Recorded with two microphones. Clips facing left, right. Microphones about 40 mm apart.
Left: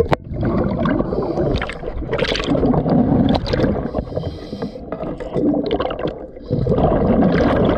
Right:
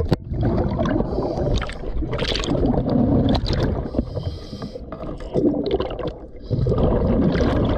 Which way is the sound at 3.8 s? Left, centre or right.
Left.